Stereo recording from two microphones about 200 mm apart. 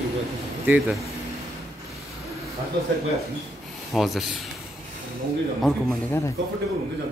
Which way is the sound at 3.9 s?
Centre (ahead or behind).